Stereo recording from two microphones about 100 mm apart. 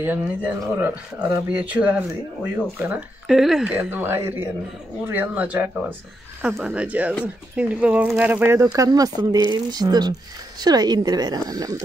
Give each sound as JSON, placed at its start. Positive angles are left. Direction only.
{"t": 0.0, "sound": "speech", "side_deg": -20}
{"t": 3.3, "sound": "speech", "side_deg": -5}
{"t": 3.6, "sound": "speech", "side_deg": -20}
{"t": 8.7, "sound": "speech", "side_deg": -40}